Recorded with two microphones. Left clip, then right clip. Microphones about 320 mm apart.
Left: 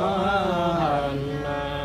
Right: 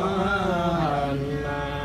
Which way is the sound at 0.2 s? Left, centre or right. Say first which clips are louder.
Left 1 dB; centre.